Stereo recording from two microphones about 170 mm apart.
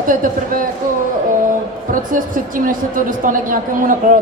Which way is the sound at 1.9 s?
55° right (ahead or behind).